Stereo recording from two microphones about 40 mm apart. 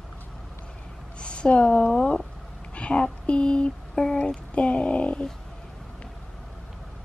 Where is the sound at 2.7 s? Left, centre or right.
Left.